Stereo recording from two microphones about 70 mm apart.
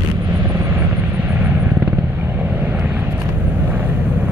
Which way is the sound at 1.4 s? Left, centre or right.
Centre.